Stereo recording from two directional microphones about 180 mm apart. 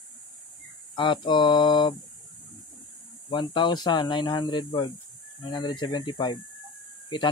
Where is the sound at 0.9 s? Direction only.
25° left (ahead or behind).